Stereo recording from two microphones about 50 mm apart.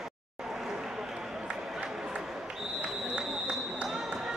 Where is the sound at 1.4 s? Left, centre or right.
Right.